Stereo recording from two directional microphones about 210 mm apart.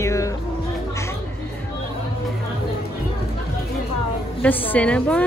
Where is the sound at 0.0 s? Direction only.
15° left (ahead or behind).